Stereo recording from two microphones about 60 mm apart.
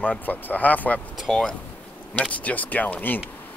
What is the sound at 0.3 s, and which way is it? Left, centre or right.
Speech, left.